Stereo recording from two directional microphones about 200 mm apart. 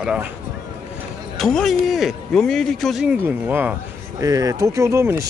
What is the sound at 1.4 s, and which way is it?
Speech, centre (ahead or behind).